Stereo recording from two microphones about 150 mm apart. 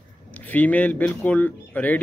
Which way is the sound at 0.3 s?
10° left (ahead or behind).